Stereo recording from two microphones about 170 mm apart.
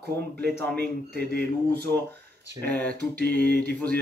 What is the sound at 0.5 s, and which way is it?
Speech, 10° left (ahead or behind).